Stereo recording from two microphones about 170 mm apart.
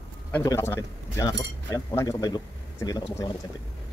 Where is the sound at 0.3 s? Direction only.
15° left (ahead or behind).